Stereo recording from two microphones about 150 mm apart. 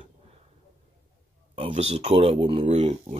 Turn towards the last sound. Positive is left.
turn(degrees=-40)  # may be behind; listen again after turning